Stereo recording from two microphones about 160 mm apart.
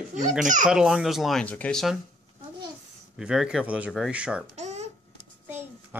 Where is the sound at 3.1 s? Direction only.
5° right (ahead or behind).